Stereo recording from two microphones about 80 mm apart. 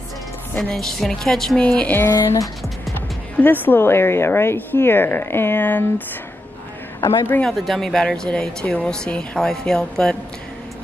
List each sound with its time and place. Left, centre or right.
0.6 s a woman's voice: centre
1.6 s speech: centre
2.0 s speech: left
3.3 s a woman's voice: left
7.4 s speech: centre